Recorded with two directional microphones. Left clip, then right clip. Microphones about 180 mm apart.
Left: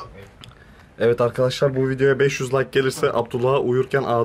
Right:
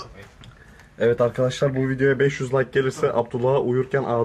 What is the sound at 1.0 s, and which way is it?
Speech, 15° left (ahead or behind).